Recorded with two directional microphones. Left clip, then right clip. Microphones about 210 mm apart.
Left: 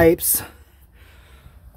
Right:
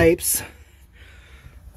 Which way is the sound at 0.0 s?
25° left (ahead or behind).